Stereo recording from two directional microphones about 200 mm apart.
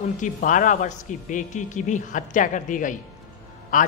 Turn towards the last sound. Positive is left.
turn(degrees=45)  # may be behind; listen again after turning